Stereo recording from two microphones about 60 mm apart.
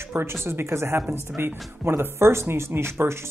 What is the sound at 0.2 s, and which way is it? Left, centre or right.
Speech, right.